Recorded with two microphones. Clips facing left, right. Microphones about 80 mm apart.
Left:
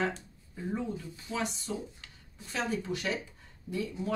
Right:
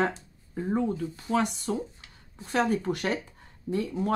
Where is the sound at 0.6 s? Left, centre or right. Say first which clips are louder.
Right 8 dB; right.